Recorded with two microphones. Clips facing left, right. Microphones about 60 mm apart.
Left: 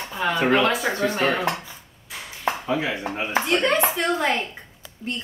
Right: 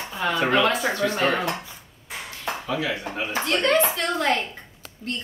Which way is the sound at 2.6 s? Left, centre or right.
Left.